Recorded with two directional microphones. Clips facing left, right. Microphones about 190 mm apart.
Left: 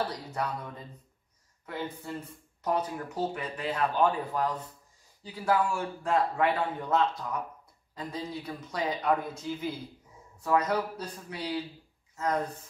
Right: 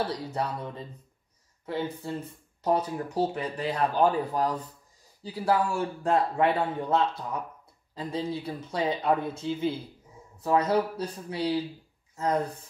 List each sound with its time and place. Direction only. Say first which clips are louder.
0.1 s speech: right 3 dB; 30° right (ahead or behind)
2.0 s a man's voice: right 4 dB; 30° right (ahead or behind)